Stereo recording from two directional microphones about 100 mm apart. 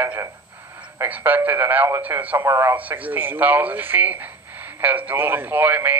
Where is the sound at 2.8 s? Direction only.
15° right (ahead or behind).